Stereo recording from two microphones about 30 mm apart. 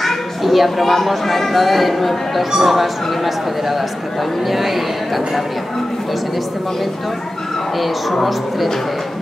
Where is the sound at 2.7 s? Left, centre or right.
Centre.